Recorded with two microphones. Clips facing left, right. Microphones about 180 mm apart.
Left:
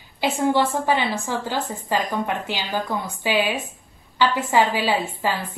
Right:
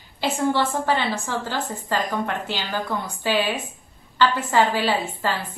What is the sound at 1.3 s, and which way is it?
A woman's voice, 15° left (ahead or behind).